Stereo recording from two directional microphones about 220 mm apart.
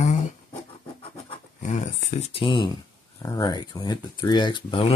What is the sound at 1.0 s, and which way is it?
Scratch, 30° left (ahead or behind).